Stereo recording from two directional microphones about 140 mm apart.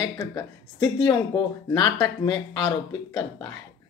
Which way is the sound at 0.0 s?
20° left (ahead or behind).